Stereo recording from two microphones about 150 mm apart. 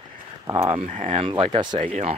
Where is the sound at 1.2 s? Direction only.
35° right (ahead or behind).